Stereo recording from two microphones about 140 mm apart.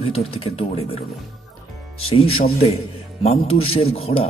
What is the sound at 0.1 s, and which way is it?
Speech, 45° left (ahead or behind).